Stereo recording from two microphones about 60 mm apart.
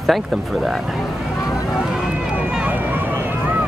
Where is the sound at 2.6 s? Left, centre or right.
Right.